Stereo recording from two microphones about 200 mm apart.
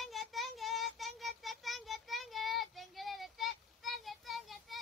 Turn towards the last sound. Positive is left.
turn(degrees=0)  # may be behind; listen again after turning